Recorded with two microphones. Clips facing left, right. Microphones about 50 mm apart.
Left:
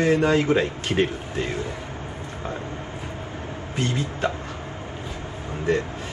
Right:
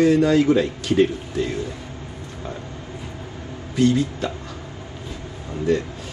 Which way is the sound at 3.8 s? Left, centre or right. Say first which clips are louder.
Right 7 dB; left.